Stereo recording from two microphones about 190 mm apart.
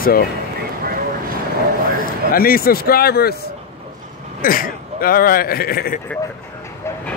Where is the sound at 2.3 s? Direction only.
50° left (ahead or behind).